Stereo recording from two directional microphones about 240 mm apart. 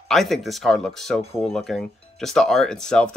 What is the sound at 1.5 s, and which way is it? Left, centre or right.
Speech, centre.